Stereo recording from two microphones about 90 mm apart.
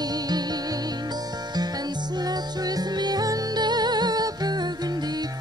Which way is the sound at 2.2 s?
45° right (ahead or behind).